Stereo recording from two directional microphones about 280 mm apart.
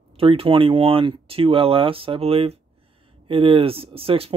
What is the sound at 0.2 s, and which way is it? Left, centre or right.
Speech, centre.